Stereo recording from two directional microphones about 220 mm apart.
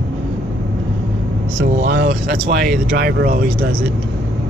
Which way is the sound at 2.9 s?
45° right (ahead or behind).